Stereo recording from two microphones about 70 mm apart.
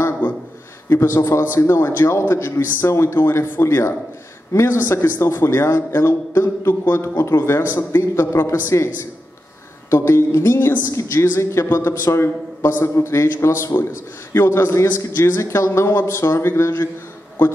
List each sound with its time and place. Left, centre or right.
0.8 s a man's voice: left